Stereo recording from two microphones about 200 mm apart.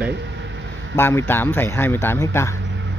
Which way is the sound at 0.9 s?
10° left (ahead or behind).